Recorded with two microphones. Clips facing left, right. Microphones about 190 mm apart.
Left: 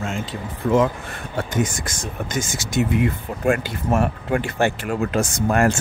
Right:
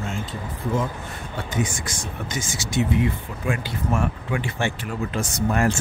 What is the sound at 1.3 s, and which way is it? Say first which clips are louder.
Speech: left 4 dB; 45° left (ahead or behind).